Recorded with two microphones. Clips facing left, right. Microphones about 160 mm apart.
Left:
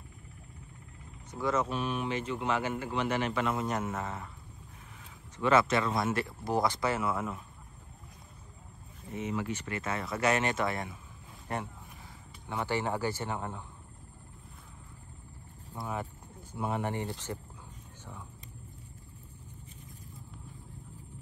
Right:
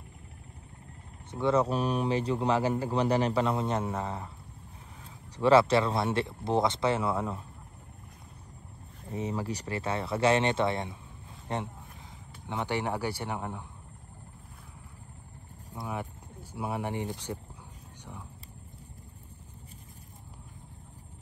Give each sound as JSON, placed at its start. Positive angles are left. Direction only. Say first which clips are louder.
{"t": 1.3, "sound": "a man's voice", "louder": "right 5 dB", "side_deg": -30}
{"t": 5.4, "sound": "speech", "louder": "right 4 dB", "side_deg": -30}
{"t": 9.1, "sound": "speech", "louder": "right 1 dB", "side_deg": -35}
{"t": 16.5, "sound": "speech", "louder": "even", "side_deg": -10}